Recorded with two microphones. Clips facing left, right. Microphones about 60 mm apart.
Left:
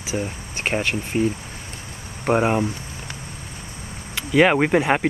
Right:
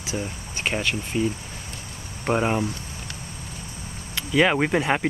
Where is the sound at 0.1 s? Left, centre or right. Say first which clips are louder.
Left 4 dB; left.